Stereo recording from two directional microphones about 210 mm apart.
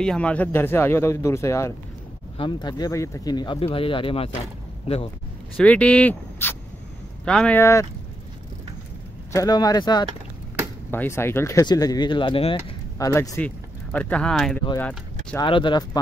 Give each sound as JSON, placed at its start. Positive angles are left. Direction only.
{"t": 0.0, "sound": "speech", "side_deg": 5}
{"t": 5.6, "sound": "speech", "side_deg": 5}
{"t": 9.3, "sound": "speech", "side_deg": 15}
{"t": 13.1, "sound": "speech", "side_deg": 15}
{"t": 15.3, "sound": "speech", "side_deg": 25}